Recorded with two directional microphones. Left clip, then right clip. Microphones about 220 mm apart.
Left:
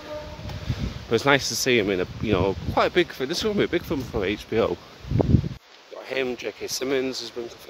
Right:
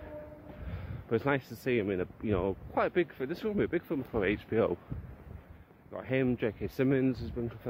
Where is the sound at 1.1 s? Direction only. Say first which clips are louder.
Left 11 dB; 20° left (ahead or behind).